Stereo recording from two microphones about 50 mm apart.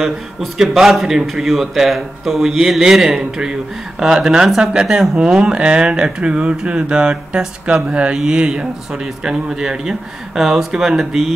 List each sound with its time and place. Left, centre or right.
0.0 s speech: centre